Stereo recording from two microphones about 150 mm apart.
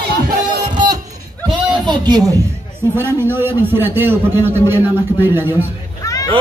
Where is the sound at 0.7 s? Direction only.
30° right (ahead or behind).